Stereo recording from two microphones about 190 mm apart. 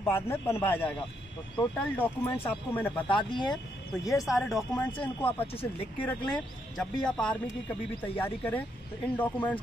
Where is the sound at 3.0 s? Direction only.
25° left (ahead or behind).